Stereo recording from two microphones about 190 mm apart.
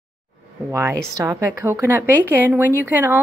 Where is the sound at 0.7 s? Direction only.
15° right (ahead or behind).